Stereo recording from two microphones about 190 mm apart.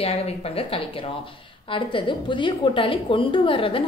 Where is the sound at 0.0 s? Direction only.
30° left (ahead or behind).